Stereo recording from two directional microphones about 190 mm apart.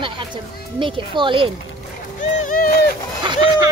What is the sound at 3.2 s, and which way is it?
Speech, 25° right (ahead or behind).